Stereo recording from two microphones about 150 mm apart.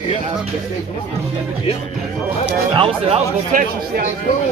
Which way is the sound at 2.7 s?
40° right (ahead or behind).